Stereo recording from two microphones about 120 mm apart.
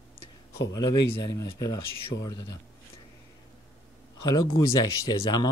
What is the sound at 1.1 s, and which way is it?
Speech, 35° left (ahead or behind).